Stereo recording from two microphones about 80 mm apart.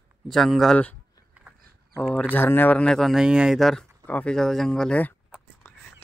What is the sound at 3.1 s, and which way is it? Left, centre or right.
Speech, centre.